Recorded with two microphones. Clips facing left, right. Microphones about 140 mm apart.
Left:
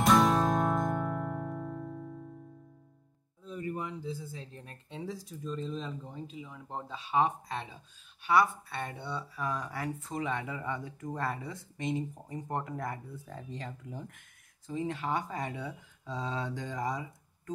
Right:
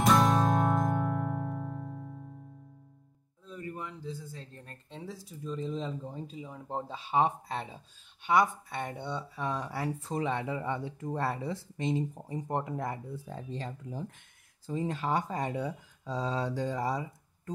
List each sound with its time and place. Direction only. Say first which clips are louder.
0.0 s music: even; centre (ahead or behind)
3.4 s speech: left 4 dB; 15° left (ahead or behind); by 5.9 s 20° right (ahead or behind)
6.1 s speech: right 2 dB; 35° right (ahead or behind)
12.4 s speech: right 3 dB; 20° right (ahead or behind); by 17.0 s 35° right (ahead or behind)